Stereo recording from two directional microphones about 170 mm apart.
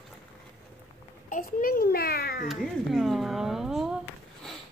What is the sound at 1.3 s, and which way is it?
A child's voice, 55° left (ahead or behind).